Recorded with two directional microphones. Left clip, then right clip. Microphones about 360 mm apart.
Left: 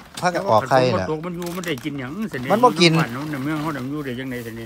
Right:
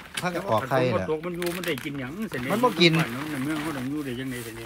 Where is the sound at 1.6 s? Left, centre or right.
Left.